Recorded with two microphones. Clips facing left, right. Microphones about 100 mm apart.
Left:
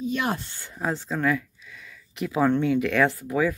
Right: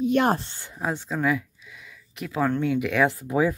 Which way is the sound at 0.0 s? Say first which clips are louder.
Right 6 dB; 55° right (ahead or behind).